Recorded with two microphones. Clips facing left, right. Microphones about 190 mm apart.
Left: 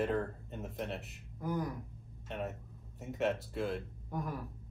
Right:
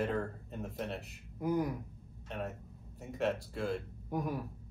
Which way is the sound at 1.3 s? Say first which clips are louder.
Right 4 dB; 20° right (ahead or behind).